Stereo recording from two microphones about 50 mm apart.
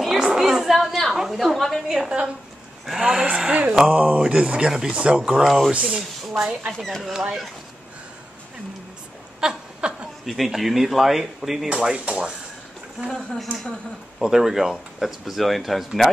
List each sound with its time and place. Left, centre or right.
0.0 s a sound: centre
0.7 s chatter: centre
1.1 s speech: centre
2.0 s speech: centre
3.3 s speech: right; by 5.7 s centre
5.7 s speech: right
6.7 s speech: centre
7.1 s speech: centre
9.4 s a sound: centre
10.2 s speech: centre
13.1 s speech: centre
14.2 s speech: centre